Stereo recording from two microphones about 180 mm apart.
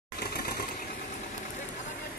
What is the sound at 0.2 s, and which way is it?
Sewing machine, 60° left (ahead or behind).